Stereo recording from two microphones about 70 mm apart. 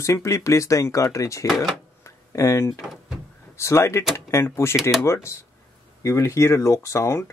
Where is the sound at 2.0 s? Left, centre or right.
Left.